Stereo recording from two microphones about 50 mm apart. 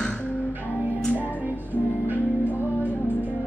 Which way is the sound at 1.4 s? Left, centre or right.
Right.